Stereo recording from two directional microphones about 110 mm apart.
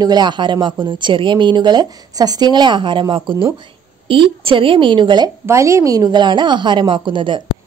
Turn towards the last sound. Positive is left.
turn(degrees=-45)  # may be behind; listen again after turning